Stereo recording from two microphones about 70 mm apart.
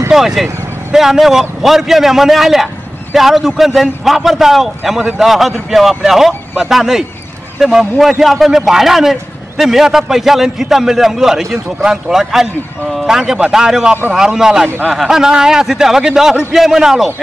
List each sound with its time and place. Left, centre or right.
0.1 s a man's voice: centre